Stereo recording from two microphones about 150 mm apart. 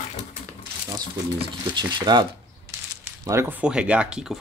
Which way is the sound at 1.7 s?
30° right (ahead or behind).